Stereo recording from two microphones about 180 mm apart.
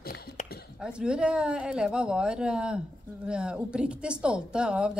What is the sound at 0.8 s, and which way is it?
Speech, 5° right (ahead or behind).